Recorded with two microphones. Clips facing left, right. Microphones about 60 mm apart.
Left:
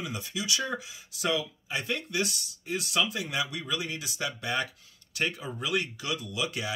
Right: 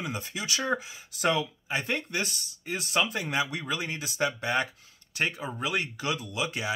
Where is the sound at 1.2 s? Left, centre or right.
Right.